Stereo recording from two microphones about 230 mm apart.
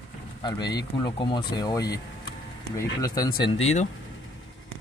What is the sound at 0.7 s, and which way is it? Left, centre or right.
A man's voice, left.